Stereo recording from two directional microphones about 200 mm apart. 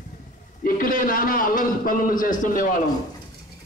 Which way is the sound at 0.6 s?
45° left (ahead or behind).